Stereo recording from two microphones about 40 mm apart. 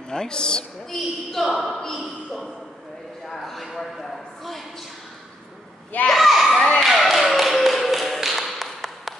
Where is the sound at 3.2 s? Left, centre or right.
Centre.